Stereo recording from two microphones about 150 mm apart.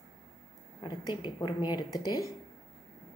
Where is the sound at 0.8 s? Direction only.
30° left (ahead or behind).